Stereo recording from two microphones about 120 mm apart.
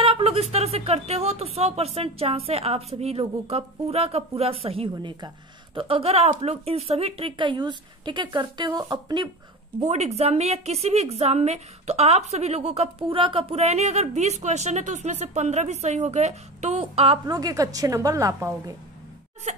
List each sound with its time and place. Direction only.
0.0 s speech: 55° right (ahead or behind)
9.8 s speech: 65° right (ahead or behind)
13.1 s a woman's voice: 50° right (ahead or behind)
17.3 s a woman's voice: 30° right (ahead or behind)
19.5 s a woman's voice: 75° right (ahead or behind)